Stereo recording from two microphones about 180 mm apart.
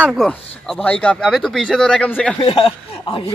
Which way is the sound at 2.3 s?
30° left (ahead or behind).